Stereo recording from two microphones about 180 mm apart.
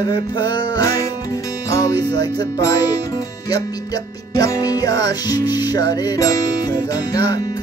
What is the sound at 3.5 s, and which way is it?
Music, 20° left (ahead or behind).